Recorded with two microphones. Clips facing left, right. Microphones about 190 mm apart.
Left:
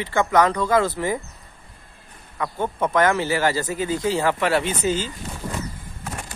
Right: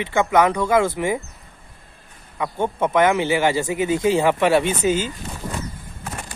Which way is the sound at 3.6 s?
10° right (ahead or behind).